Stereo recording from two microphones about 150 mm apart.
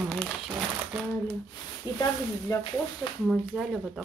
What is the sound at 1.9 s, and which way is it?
Speech, 25° left (ahead or behind).